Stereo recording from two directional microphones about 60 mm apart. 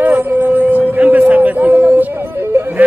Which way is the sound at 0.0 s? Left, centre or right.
Right.